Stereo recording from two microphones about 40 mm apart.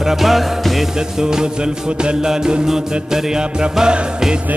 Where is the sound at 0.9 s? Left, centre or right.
Centre.